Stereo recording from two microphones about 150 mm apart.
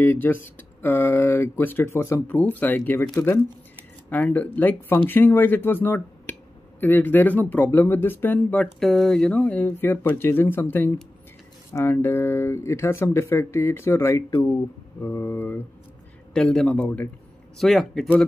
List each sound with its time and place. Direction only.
0.0 s a man's voice: 15° left (ahead or behind)